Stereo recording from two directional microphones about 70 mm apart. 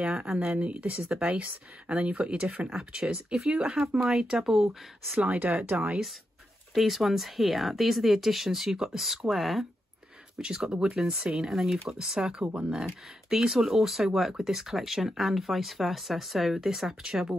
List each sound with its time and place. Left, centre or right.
0.0 s speech: centre
5.1 s speech: right
6.7 s speech: centre
10.4 s speech: centre